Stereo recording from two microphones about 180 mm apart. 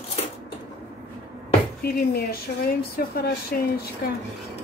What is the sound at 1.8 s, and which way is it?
A woman's voice, 60° left (ahead or behind).